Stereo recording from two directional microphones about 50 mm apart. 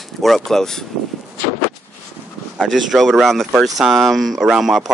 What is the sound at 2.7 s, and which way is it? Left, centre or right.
Speech, centre.